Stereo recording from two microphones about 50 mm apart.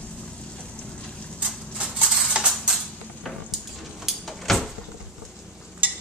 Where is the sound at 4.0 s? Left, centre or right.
Centre.